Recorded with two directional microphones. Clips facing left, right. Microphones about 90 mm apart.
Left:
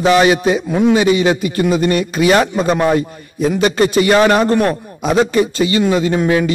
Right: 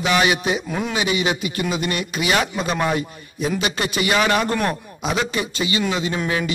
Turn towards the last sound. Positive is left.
turn(degrees=40)  # may be behind; listen again after turning